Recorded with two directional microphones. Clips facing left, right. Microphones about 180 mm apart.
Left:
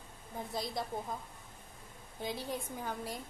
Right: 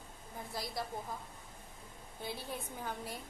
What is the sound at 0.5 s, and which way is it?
Speech, 20° left (ahead or behind).